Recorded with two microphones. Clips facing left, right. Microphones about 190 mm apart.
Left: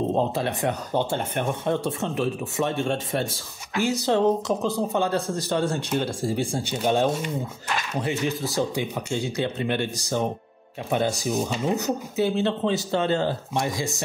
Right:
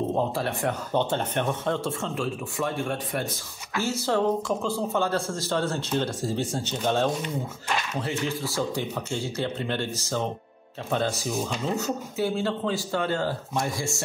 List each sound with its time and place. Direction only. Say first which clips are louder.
0.1 s speech: left 2 dB; 20° left (ahead or behind)